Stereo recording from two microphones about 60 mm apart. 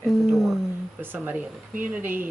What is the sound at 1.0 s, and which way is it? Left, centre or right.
Speech, right.